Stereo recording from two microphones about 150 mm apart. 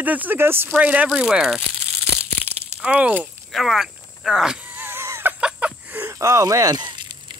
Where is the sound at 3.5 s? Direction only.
Centre (ahead or behind).